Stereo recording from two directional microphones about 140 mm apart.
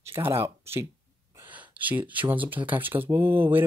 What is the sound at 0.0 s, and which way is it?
Speech, 20° right (ahead or behind).